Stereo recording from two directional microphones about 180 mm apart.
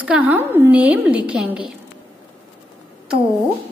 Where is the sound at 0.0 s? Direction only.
10° right (ahead or behind).